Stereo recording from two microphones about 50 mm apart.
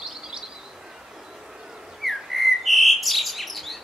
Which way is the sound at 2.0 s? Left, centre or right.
Centre.